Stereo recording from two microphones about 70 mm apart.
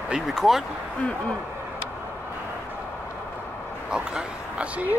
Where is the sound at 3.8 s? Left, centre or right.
Centre.